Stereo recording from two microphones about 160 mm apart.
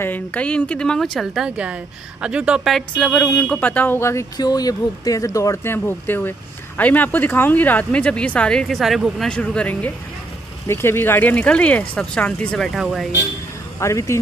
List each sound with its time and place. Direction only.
0.0 s speech: 10° left (ahead or behind)
13.7 s speech: 20° left (ahead or behind)